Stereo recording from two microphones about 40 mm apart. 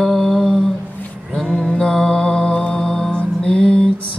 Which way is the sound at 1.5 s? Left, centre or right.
Centre.